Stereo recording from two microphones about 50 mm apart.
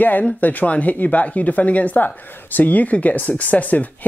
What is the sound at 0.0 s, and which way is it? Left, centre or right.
Speech, left.